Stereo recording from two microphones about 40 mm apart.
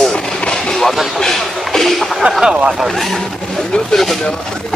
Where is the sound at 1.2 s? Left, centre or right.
Centre.